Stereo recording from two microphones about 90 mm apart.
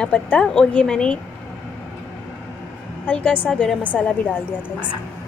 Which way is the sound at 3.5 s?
15° left (ahead or behind).